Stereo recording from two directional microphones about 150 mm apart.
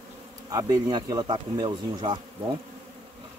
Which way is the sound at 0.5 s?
25° right (ahead or behind).